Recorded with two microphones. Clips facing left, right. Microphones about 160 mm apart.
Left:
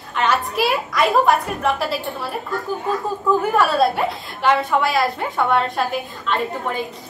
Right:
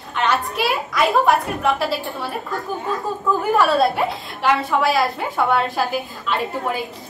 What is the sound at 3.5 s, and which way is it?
A woman's voice, centre (ahead or behind).